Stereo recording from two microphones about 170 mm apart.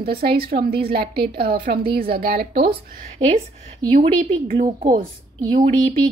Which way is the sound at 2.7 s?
35° right (ahead or behind).